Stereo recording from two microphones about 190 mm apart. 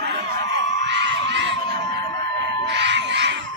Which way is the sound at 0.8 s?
70° right (ahead or behind).